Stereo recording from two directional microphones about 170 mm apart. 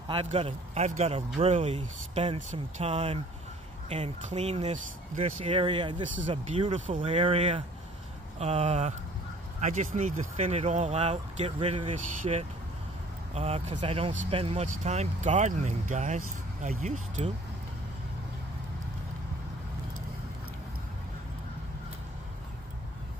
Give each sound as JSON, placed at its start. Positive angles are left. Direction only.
{"t": 0.1, "sound": "speech", "side_deg": -35}